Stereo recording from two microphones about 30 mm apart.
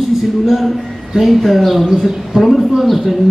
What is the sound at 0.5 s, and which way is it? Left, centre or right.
A man's voice, centre.